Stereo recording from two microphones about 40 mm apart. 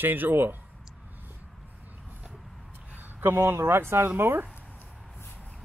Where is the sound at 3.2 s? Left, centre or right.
Right.